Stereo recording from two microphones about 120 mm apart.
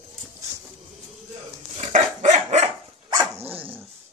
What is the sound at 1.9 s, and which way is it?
Dog, 80° right.